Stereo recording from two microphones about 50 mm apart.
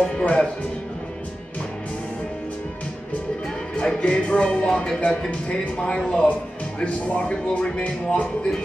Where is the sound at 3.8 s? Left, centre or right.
Centre.